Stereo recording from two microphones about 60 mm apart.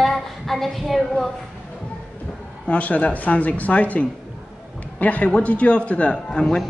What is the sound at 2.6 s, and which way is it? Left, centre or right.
A man's voice, left.